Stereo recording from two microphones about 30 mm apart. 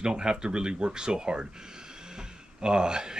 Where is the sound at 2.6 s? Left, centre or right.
Right.